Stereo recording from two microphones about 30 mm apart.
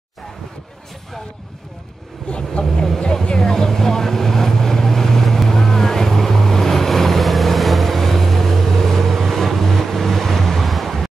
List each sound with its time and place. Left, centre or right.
2.2 s vehicle: left
2.6 s speech: centre
3.3 s vehicle: centre